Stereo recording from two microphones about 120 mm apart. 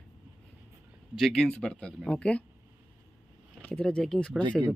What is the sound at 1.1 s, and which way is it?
Speech, centre (ahead or behind).